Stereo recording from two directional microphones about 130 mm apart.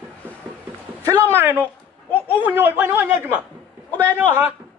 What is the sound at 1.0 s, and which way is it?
A man's voice, 20° right (ahead or behind).